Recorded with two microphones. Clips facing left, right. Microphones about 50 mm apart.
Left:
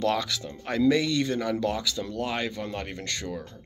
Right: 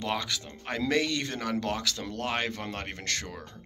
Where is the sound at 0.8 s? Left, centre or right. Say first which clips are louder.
Left 5 dB; right.